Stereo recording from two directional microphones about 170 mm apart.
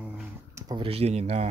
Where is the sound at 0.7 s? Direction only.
35° right (ahead or behind).